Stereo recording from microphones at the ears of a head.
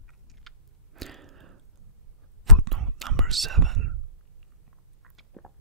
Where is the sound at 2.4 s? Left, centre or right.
Right.